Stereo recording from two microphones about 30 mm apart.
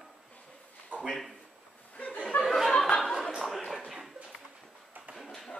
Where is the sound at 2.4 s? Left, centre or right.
Centre.